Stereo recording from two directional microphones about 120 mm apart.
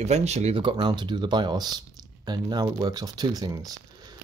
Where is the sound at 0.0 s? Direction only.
65° right (ahead or behind).